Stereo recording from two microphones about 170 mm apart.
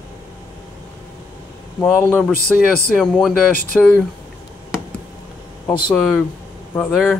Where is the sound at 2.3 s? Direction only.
60° left (ahead or behind).